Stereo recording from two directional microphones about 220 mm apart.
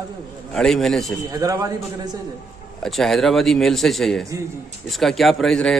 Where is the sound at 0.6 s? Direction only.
Centre (ahead or behind).